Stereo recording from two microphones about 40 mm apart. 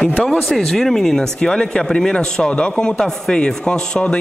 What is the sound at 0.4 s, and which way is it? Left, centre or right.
Speech, centre.